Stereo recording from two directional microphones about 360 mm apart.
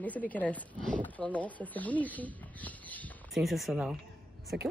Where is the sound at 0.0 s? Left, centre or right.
Centre.